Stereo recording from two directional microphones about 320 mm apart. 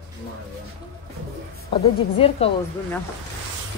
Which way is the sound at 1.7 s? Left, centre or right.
Centre.